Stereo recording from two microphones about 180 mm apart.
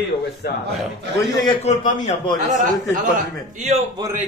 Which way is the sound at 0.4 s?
70° left (ahead or behind).